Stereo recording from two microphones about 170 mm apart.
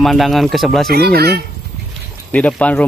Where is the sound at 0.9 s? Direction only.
65° right (ahead or behind).